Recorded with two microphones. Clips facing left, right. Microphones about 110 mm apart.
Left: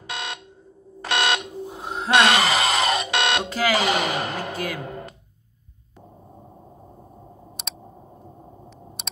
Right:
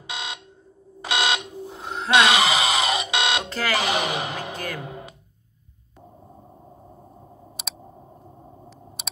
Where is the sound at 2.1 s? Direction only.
15° right (ahead or behind).